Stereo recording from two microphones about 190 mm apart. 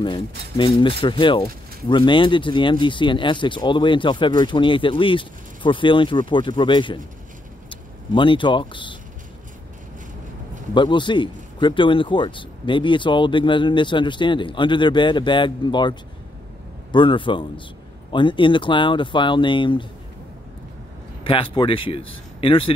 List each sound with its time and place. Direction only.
0.0 s speech: 25° left (ahead or behind)
10.7 s speech: 25° left (ahead or behind)
21.2 s speech: 25° left (ahead or behind)